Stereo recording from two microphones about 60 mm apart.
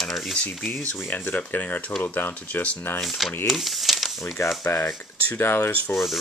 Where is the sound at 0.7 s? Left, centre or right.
Left.